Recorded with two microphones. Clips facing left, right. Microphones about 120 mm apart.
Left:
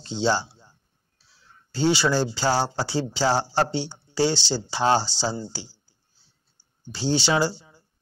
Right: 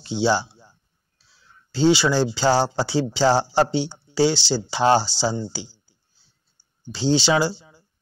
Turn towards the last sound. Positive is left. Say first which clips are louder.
# right 1 dB
turn(degrees=-15)  # may be behind; listen again after turning